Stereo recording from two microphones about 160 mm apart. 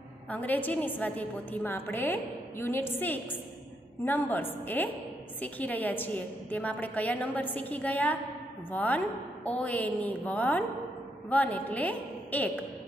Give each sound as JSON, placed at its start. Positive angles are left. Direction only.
{"t": 0.3, "sound": "a woman's voice", "side_deg": 10}